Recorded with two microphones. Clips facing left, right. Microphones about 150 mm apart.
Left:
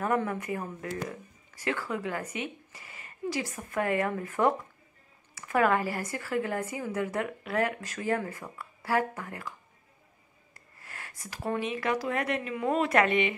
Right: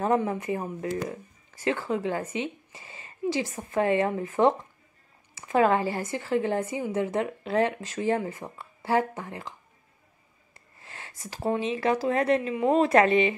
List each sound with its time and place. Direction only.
0.0 s speech: 25° right (ahead or behind)
10.5 s speech: 25° right (ahead or behind)